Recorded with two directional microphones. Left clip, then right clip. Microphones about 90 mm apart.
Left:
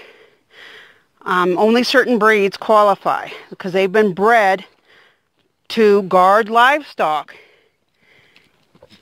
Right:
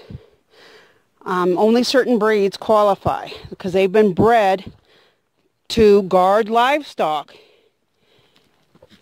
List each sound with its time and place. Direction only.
0.1 s a sound: 55° right (ahead or behind)
2.6 s speech: 60° right (ahead or behind)
5.7 s speech: 90° right